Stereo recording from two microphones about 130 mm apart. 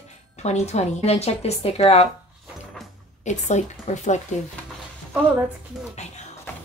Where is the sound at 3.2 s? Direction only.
65° left (ahead or behind).